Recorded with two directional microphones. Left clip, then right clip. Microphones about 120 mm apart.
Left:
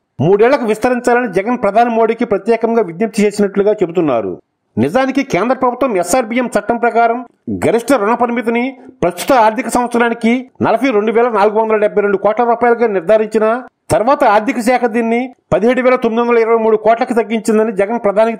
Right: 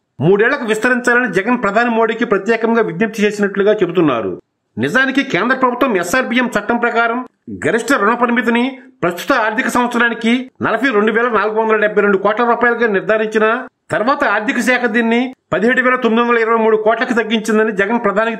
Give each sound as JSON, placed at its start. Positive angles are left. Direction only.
{"t": 0.3, "sound": "speech", "side_deg": 35}